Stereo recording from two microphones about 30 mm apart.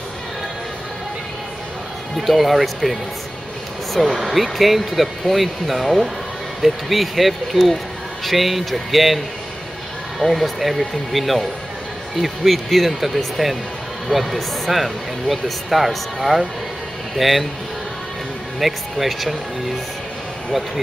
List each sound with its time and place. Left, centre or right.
2.1 s speech: centre
18.6 s speech: centre